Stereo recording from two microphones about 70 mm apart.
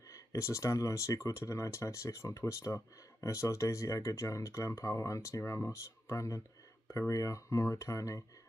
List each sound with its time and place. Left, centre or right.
0.1 s speech: left